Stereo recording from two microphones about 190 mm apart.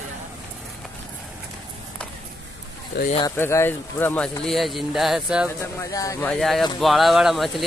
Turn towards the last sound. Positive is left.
turn(degrees=0)  # may be behind; listen again after turning